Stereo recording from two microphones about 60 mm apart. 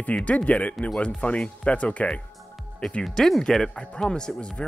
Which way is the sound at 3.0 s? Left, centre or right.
Centre.